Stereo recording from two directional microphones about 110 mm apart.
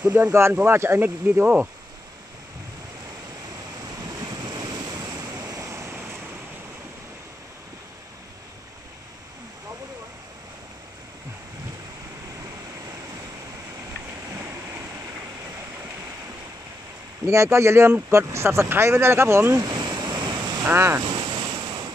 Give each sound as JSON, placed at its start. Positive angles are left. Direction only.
{"t": 0.0, "sound": "speech", "side_deg": -15}
{"t": 3.9, "sound": "waves", "side_deg": -35}
{"t": 14.3, "sound": "waves", "side_deg": -25}
{"t": 17.3, "sound": "speech", "side_deg": -25}
{"t": 19.7, "sound": "vehicle", "side_deg": -40}
{"t": 20.6, "sound": "speech", "side_deg": -25}
{"t": 21.0, "sound": "waves", "side_deg": -40}